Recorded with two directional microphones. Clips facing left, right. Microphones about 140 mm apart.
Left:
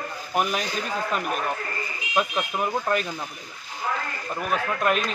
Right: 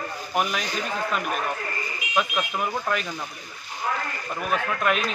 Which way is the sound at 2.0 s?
30° left (ahead or behind).